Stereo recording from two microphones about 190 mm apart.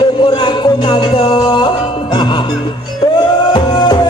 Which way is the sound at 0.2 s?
25° left (ahead or behind).